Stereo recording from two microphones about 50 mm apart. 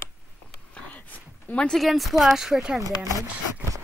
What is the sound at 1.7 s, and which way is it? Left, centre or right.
Speech, centre.